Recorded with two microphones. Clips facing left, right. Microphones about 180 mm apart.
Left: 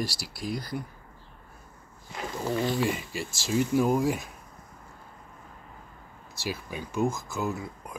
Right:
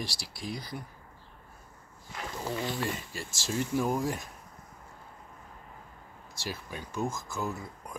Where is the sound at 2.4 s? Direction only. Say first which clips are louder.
Left 6 dB; 10° left (ahead or behind).